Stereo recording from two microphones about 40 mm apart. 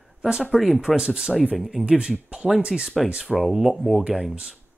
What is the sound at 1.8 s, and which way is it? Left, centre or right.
Speech, right.